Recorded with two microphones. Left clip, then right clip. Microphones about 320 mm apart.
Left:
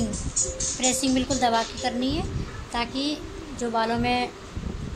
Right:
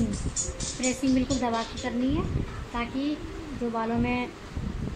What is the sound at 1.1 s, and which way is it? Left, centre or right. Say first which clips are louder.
Speech: left 4 dB; left.